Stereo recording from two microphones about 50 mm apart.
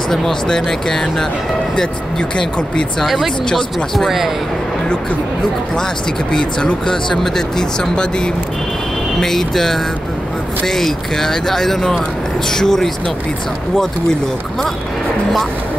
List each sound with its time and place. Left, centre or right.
0.1 s speech: centre
3.0 s speech: centre
6.3 s speech: centre